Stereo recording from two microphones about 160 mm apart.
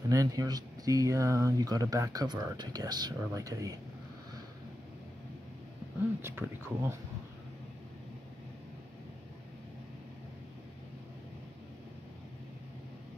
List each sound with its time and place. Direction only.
0.1 s speech: 20° right (ahead or behind)
6.2 s speech: 15° right (ahead or behind)